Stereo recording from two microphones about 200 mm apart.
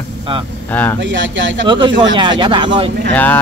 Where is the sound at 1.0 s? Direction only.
65° right (ahead or behind).